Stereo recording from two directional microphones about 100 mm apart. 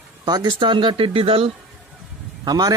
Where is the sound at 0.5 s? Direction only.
55° right (ahead or behind).